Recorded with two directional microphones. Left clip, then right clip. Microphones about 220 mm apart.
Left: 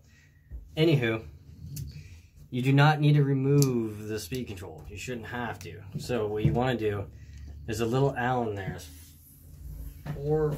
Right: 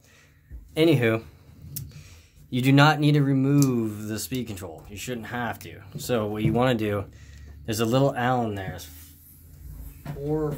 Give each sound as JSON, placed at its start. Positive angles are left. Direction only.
{"t": 0.7, "sound": "speech", "side_deg": -45}
{"t": 2.5, "sound": "speech", "side_deg": -45}